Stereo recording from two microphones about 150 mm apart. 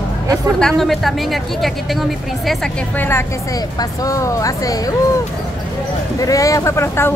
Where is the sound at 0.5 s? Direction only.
5° left (ahead or behind).